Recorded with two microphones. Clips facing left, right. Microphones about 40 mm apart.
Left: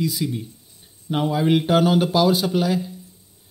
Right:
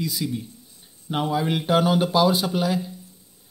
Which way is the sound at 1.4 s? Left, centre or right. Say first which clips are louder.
Left 4 dB; left.